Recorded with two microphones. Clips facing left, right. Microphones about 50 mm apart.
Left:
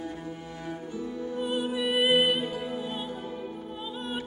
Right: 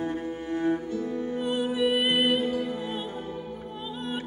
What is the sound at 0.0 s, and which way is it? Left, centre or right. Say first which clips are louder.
Cello: right 6 dB; right.